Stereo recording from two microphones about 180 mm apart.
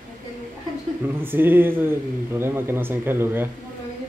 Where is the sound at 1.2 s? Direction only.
10° right (ahead or behind).